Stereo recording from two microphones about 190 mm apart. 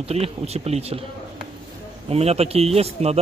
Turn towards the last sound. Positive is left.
turn(degrees=-35)  # may be behind; listen again after turning